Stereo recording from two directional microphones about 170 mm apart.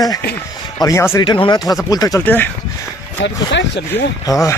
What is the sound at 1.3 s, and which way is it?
Speech, 30° left (ahead or behind).